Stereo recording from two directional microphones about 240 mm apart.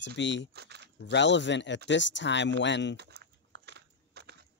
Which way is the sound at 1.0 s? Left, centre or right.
Left.